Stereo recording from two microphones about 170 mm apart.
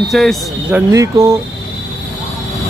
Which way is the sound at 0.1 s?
Centre (ahead or behind).